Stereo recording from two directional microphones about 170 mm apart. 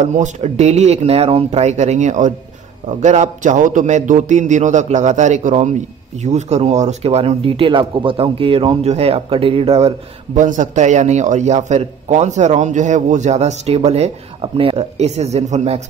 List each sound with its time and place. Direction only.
0.0 s speech: 45° right (ahead or behind)